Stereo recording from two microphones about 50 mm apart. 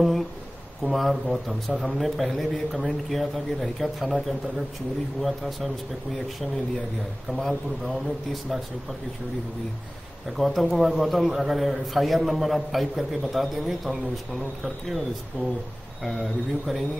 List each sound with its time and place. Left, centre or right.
0.0 s a sound: centre
0.8 s a man's voice: centre
1.7 s speech: centre
2.0 s a man's voice: centre
7.2 s a man's voice: centre
10.3 s a man's voice: centre